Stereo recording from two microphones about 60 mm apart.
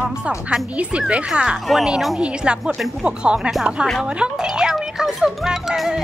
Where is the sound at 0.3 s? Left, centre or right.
Centre.